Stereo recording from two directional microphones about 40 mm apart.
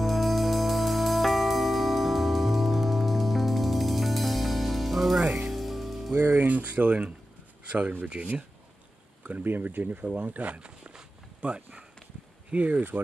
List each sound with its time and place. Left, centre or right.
0.0 s music: centre
6.4 s speech: right
8.2 s speech: right
9.4 s speech: right
10.6 s walk: right
12.4 s speech: right